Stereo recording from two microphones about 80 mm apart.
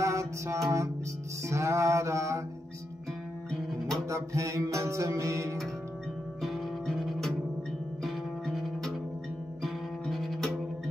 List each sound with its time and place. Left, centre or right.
0.0 s music: right
1.5 s mantra: right
4.1 s music: right
6.4 s music: centre